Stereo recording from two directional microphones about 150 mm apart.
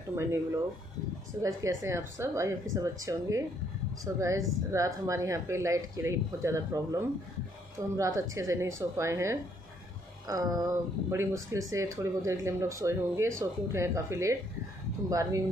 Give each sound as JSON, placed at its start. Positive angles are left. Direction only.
{"t": 0.1, "sound": "speech", "side_deg": -20}